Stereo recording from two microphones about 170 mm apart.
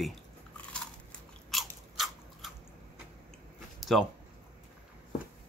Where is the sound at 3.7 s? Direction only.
Centre (ahead or behind).